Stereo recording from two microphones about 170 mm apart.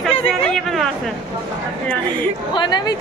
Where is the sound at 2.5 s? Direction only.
25° left (ahead or behind).